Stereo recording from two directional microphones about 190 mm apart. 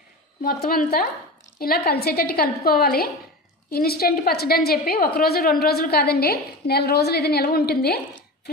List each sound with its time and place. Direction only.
0.4 s a woman's voice: 50° left (ahead or behind)